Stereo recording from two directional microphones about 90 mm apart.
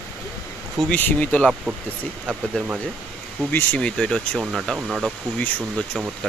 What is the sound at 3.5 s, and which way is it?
Speech, 15° left (ahead or behind).